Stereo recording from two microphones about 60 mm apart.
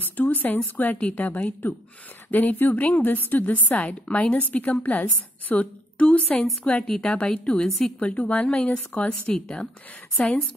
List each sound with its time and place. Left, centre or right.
0.0 s a woman's voice: left